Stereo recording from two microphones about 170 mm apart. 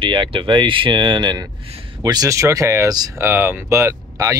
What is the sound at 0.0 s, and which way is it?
Speech, 30° right (ahead or behind).